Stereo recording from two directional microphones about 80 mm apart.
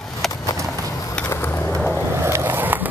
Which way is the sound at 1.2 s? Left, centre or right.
Left.